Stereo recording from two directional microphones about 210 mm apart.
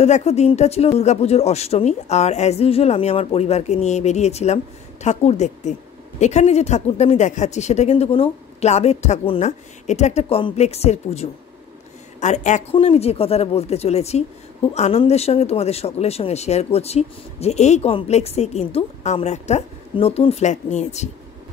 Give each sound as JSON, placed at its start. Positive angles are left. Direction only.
{"t": 0.0, "sound": "speech", "side_deg": 30}